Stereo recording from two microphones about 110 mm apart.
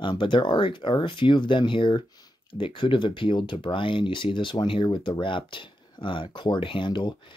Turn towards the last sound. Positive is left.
turn(degrees=45)  # may be behind; listen again after turning